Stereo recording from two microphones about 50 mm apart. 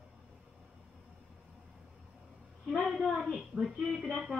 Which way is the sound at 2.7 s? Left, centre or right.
Centre.